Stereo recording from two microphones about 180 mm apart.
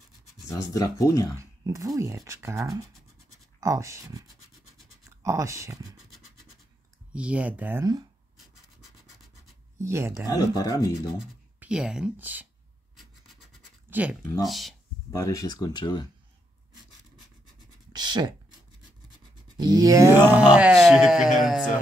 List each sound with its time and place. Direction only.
0.7 s speech: 20° left (ahead or behind)
1.6 s speech: 20° right (ahead or behind)
5.2 s speech: 15° right (ahead or behind)
7.2 s speech: 5° right (ahead or behind)
8.4 s rub: centre (ahead or behind)
9.8 s speech: 15° right (ahead or behind)
10.2 s speech: 20° left (ahead or behind)
11.1 s speech: 5° right (ahead or behind)
13.8 s a sound: 10° right (ahead or behind)
14.4 s speech: centre (ahead or behind)
15.0 s speech: 20° left (ahead or behind)
17.9 s a sound: 25° right (ahead or behind)
19.5 s speech: 20° right (ahead or behind); by 21.6 s centre (ahead or behind)